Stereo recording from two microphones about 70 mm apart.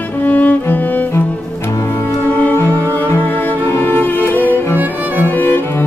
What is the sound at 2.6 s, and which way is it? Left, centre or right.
Music, left.